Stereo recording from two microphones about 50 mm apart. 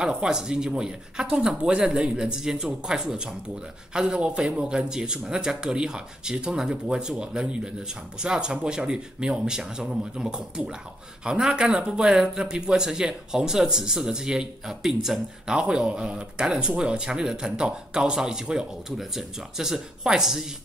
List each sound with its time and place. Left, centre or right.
0.0 s speech: centre
4.2 s speech: right